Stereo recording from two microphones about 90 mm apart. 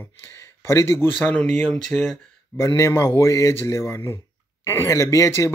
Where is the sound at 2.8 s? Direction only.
30° left (ahead or behind).